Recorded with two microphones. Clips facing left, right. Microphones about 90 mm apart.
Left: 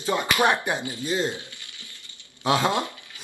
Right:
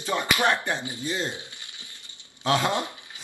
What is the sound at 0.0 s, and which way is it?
Speech, 15° left (ahead or behind).